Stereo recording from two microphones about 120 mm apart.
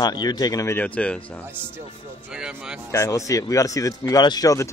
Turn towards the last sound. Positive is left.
turn(degrees=30)  # may be behind; listen again after turning